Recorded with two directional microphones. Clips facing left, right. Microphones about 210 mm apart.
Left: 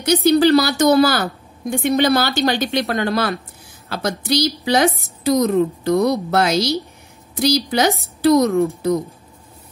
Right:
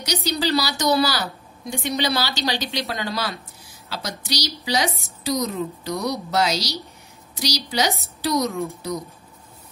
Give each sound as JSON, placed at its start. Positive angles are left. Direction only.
{"t": 0.0, "sound": "a woman's voice", "side_deg": 55}